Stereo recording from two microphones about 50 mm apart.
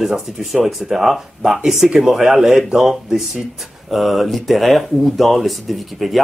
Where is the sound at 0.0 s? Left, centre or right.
Centre.